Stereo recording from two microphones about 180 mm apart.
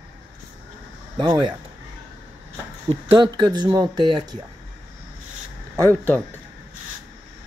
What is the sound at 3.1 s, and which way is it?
Speech, 25° right (ahead or behind).